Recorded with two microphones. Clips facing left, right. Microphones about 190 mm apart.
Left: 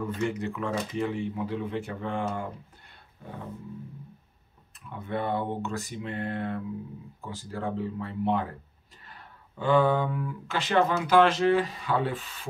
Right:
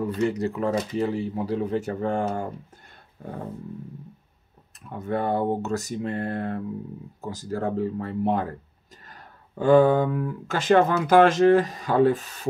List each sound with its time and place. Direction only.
0.0 s speech: 35° right (ahead or behind)
4.8 s speech: 40° right (ahead or behind)